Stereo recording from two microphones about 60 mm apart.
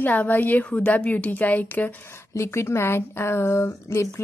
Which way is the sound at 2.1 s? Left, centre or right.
Left.